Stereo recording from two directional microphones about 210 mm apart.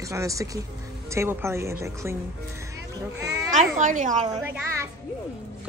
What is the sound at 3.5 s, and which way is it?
Speech, 35° right (ahead or behind).